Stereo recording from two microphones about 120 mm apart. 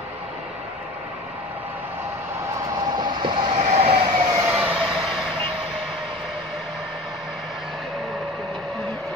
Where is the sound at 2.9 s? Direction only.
40° right (ahead or behind).